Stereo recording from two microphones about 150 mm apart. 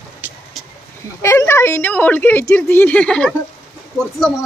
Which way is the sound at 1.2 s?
20° left (ahead or behind).